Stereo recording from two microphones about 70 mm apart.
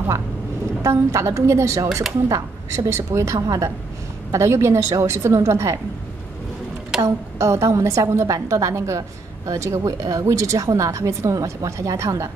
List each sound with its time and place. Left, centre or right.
0.8 s a woman's voice: right
2.2 s a woman's voice: right
2.9 s a woman's voice: right
3.3 s a woman's voice: right
4.3 s a woman's voice: right
7.0 s a woman's voice: right